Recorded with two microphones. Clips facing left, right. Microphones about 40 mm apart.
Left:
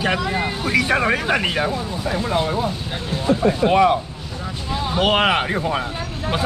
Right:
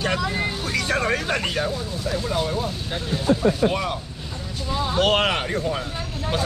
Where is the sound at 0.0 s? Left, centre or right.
Centre.